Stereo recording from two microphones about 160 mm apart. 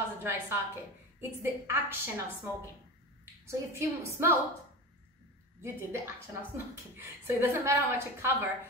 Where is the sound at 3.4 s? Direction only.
15° right (ahead or behind).